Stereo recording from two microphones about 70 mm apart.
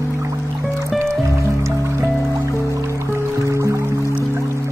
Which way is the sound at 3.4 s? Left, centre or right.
Right.